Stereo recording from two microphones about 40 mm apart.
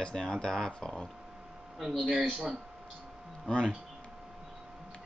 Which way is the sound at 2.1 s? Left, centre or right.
Right.